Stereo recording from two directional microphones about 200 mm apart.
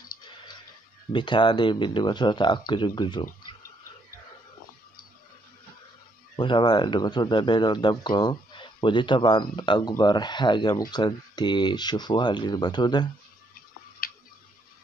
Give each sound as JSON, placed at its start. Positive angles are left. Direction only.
{"t": 1.1, "sound": "speech", "side_deg": 25}
{"t": 6.3, "sound": "speech", "side_deg": 25}